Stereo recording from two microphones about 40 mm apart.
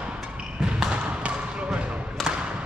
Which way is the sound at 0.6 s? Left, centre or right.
Centre.